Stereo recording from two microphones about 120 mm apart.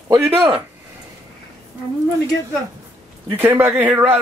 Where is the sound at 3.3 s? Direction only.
15° right (ahead or behind).